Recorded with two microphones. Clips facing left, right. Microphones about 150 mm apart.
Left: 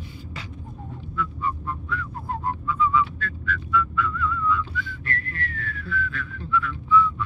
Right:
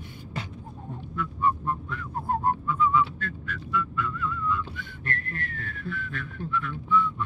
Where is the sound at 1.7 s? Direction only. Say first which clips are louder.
Even; 45° right (ahead or behind).